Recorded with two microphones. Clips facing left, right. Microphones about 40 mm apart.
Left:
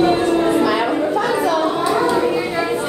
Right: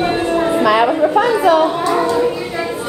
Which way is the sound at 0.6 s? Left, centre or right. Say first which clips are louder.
Right 4 dB; right.